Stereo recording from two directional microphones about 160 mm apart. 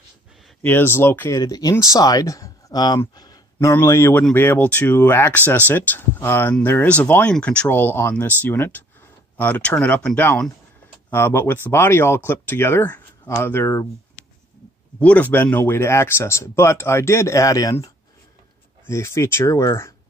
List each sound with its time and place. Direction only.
0.6 s speech: 10° left (ahead or behind)
1.4 s speech: 25° left (ahead or behind)
15.0 s speech: 10° left (ahead or behind)